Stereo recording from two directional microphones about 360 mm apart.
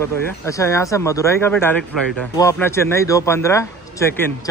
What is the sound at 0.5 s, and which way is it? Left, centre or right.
Speech, centre.